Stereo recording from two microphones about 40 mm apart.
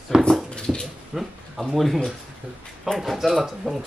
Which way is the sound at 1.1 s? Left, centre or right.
Centre.